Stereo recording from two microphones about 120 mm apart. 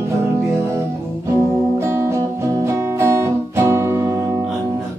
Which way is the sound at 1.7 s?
20° right (ahead or behind).